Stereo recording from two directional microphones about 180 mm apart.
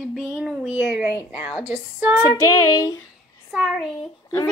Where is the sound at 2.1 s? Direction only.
20° left (ahead or behind).